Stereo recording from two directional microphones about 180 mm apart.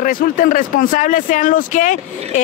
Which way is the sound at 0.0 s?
50° left (ahead or behind).